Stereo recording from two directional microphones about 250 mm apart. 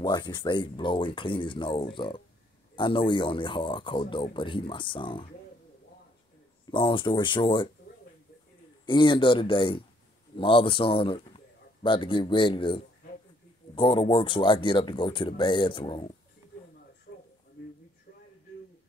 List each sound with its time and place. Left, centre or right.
0.0 s speech: centre
6.7 s speech: centre
8.8 s a man's voice: centre
17.1 s a sound: left